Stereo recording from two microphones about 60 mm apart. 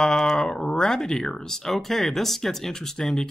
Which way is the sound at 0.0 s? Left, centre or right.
Centre.